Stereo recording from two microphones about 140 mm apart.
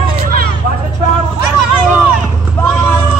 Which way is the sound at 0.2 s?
90° right.